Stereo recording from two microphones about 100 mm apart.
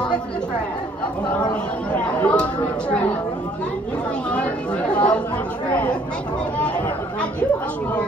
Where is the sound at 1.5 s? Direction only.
15° left (ahead or behind).